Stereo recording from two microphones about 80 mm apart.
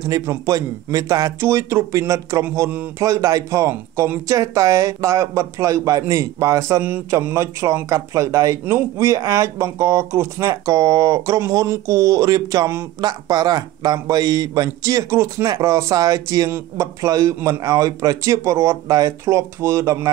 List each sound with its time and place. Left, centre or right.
0.2 s a man's voice: right
1.4 s a man's voice: right